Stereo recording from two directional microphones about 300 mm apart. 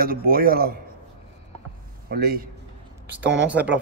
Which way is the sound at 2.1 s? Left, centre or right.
Right.